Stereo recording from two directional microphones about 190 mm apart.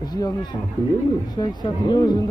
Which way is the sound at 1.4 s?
20° left (ahead or behind).